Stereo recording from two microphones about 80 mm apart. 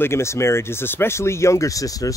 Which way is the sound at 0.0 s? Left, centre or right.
Left.